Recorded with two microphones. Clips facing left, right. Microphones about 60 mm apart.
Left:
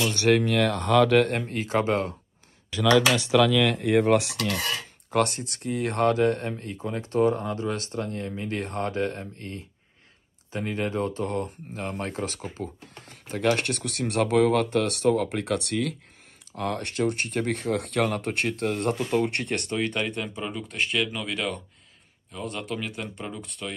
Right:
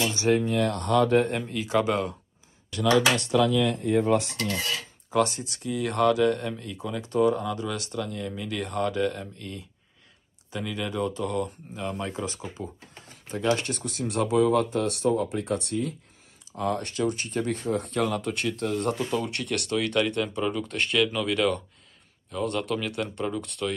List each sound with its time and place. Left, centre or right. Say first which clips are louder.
0.1 s speech: left 2 dB; left
1.5 s speech: even; left
2.9 s speech: left 2 dB; left
5.1 s speech: even; left
16.5 s speech: even; left
19.5 s speech: even; left
19.9 s speech: right 4 dB; centre